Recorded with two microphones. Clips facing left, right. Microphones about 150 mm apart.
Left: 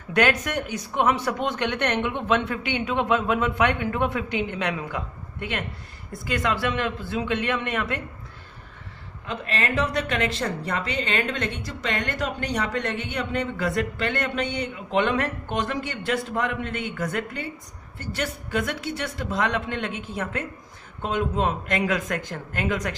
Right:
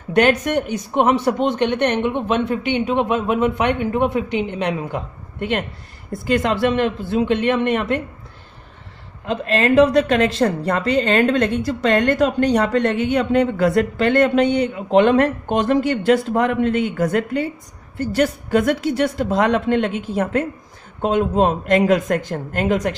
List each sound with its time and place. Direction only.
0.2 s speech: 25° right (ahead or behind)
6.3 s speech: 30° right (ahead or behind)
9.2 s a woman's voice: 35° right (ahead or behind)
21.1 s a woman's voice: 35° right (ahead or behind)